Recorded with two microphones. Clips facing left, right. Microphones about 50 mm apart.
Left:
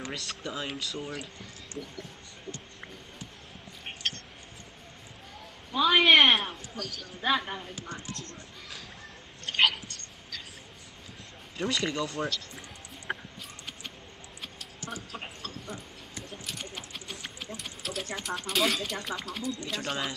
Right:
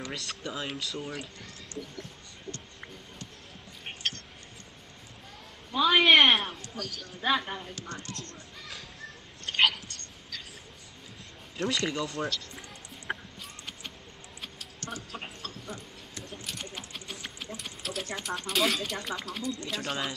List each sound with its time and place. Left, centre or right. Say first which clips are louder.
0.1 s a man's voice: even; centre
2.5 s speech: even; left
3.8 s a sound: even; centre
5.7 s a man's voice: even; centre
9.4 s whispering: even; centre
11.5 s speech: even; centre
14.4 s a sound: even; centre